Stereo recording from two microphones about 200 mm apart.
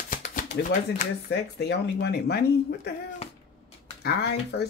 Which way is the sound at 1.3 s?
55° left (ahead or behind).